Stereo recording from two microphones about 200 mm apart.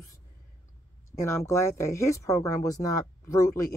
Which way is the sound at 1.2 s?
15° left (ahead or behind).